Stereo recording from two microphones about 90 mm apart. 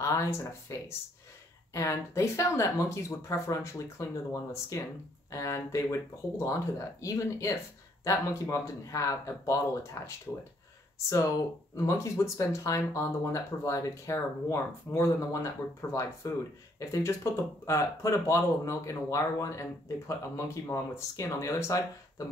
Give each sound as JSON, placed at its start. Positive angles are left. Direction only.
{"t": 0.0, "sound": "speech", "side_deg": 35}